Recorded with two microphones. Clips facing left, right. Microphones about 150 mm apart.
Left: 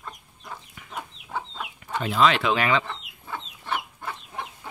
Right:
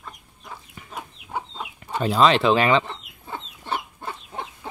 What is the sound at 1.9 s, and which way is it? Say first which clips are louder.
Chicken: right 3 dB; 35° right (ahead or behind).